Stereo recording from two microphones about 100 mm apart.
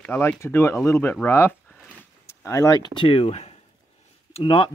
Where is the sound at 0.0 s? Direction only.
20° left (ahead or behind).